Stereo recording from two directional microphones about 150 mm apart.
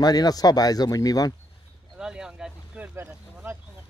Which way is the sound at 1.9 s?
5° right (ahead or behind).